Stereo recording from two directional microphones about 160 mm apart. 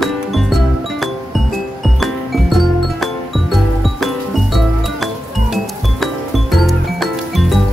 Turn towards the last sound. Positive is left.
turn(degrees=0)  # may be behind; listen again after turning